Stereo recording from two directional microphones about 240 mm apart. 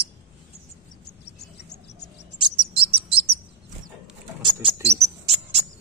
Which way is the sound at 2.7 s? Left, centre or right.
Right.